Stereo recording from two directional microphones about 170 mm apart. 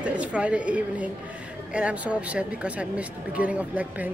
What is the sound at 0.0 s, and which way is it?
A woman's voice, 5° right (ahead or behind).